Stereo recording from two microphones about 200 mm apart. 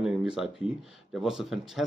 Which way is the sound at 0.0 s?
5° right (ahead or behind).